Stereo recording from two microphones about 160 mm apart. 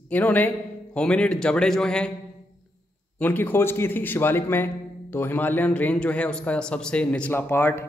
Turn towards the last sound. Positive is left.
turn(degrees=15)  # may be behind; listen again after turning